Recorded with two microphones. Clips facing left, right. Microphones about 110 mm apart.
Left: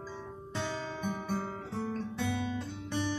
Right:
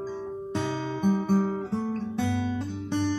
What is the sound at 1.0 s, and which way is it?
Guitar, 20° right (ahead or behind).